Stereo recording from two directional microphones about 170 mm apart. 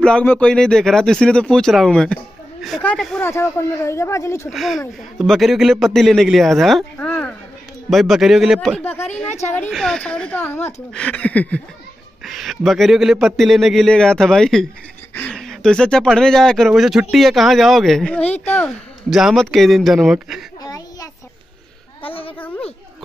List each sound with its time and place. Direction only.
0.0 s speech: 5° left (ahead or behind)
4.5 s speech: centre (ahead or behind)
9.3 s a woman's voice: 45° left (ahead or behind)
9.7 s speech: centre (ahead or behind)
20.6 s a sound: 20° left (ahead or behind)
22.0 s a sound: 35° left (ahead or behind)